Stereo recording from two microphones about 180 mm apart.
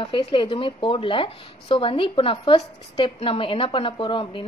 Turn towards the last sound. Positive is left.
turn(degrees=30)  # may be behind; listen again after turning